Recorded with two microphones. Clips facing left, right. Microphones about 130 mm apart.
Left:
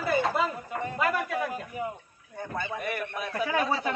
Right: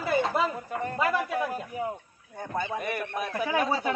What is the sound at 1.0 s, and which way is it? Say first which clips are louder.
Speech: right 1 dB; 30° right (ahead or behind).